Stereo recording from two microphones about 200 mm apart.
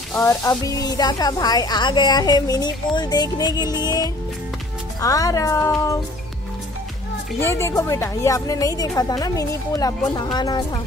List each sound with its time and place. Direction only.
0.2 s a woman's voice: 15° left (ahead or behind)
7.4 s a woman's voice: 15° left (ahead or behind)